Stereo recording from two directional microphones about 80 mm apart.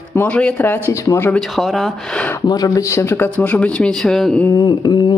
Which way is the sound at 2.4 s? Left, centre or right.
Left.